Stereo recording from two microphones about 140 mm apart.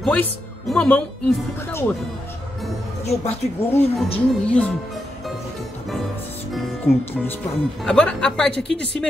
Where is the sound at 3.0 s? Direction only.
50° left (ahead or behind).